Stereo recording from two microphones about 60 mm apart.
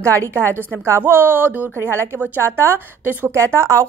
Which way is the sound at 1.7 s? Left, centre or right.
Right.